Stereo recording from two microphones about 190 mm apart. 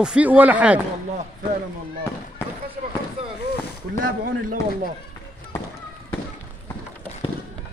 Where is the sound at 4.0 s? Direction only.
45° right (ahead or behind).